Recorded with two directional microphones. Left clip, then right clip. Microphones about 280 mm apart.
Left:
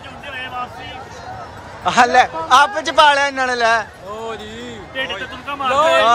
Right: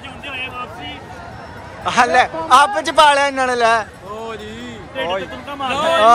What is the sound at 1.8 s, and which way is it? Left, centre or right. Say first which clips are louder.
A man's voice: left 1 dB; centre.